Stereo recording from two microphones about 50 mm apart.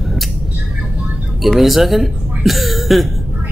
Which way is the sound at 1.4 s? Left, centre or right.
Centre.